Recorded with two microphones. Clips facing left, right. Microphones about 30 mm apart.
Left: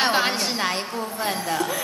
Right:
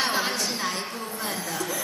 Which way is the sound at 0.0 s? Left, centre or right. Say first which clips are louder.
Left 5 dB; left.